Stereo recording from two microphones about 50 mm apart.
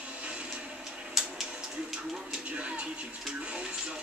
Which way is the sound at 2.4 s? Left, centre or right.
Right.